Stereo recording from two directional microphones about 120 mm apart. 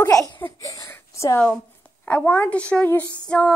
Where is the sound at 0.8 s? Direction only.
20° left (ahead or behind).